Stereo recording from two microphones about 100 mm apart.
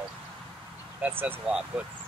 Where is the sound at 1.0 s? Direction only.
20° right (ahead or behind).